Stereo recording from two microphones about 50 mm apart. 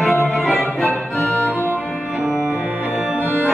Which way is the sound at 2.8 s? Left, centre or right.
Centre.